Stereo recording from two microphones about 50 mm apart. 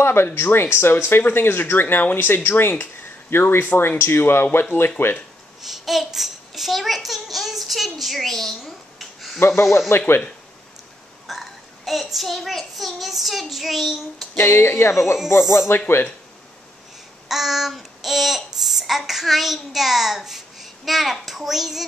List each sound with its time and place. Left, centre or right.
0.0 s speech: left
5.6 s a child's voice: centre
8.6 s a sound: centre
9.8 s speech: left
11.2 s a child's voice: centre
14.3 s speech: left
15.4 s speech: centre
17.3 s a child's voice: centre